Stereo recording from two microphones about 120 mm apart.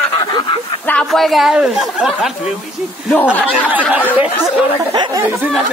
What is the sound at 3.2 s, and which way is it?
Speech, 15° left (ahead or behind).